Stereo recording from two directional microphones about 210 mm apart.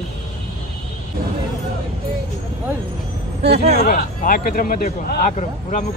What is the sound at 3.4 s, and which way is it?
Speech, 30° right (ahead or behind).